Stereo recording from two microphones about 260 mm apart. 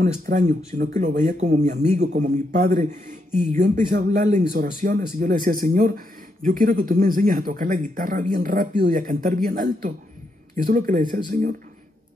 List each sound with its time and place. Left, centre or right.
0.0 s a man's voice: right